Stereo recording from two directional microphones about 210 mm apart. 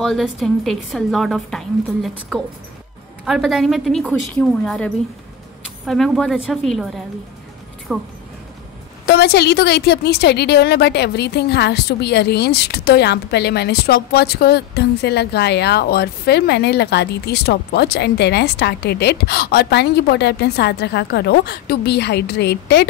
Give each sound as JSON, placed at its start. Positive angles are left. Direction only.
{"t": 0.0, "sound": "a woman's voice", "side_deg": 0}
{"t": 7.9, "sound": "speech", "side_deg": -5}
{"t": 9.0, "sound": "a woman's voice", "side_deg": 50}